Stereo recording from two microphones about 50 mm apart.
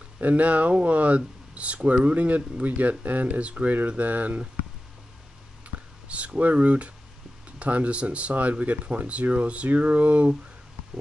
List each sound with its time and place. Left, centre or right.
0.2 s speech: right
6.0 s speech: right